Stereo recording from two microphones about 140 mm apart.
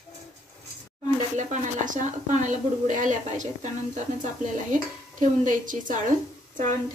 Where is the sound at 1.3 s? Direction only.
65° right (ahead or behind).